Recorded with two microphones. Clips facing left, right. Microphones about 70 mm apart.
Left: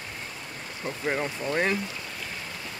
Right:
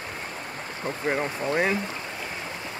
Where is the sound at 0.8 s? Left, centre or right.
Right.